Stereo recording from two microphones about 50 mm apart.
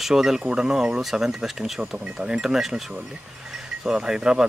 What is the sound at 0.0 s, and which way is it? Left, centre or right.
Speech, centre.